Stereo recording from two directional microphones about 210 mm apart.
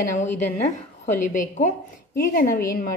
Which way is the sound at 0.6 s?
35° left (ahead or behind).